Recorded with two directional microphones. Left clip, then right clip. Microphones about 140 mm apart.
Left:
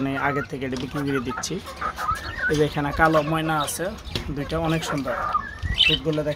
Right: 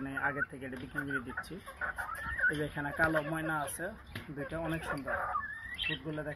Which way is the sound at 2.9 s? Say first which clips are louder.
Left 12 dB; centre (ahead or behind).